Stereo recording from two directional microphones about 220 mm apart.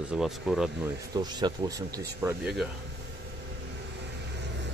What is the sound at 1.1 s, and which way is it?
Speech, 20° right (ahead or behind).